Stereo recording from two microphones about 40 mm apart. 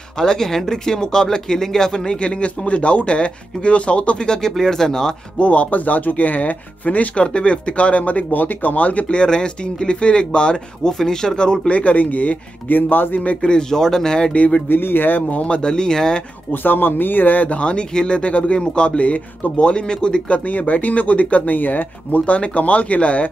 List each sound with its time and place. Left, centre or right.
0.2 s speech: centre
2.1 s speech: left
4.4 s speech: centre
5.4 s speech: left
9.2 s speech: left
10.8 s speech: centre
11.7 s speech: left
12.9 s speech: left
13.4 s speech: centre
14.3 s speech: left
14.7 s speech: left
15.4 s speech: left
16.6 s speech: left
17.6 s speech: left